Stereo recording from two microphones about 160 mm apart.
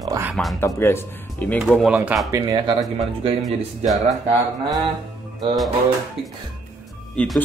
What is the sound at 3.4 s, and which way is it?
Speech, centre (ahead or behind).